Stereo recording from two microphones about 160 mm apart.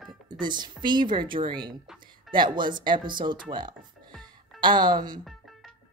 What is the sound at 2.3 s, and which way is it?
Speech, 30° right (ahead or behind).